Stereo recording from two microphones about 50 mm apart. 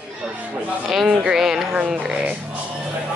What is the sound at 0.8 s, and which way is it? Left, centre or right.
Music, centre.